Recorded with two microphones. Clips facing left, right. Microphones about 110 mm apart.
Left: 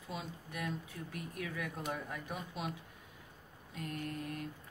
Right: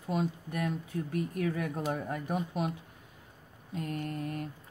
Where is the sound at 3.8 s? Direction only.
40° right (ahead or behind).